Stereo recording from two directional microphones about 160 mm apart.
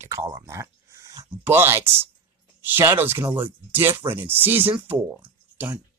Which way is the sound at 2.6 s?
15° right (ahead or behind).